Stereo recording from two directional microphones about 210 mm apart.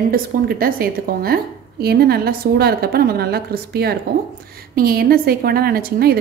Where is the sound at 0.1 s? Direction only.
45° right (ahead or behind).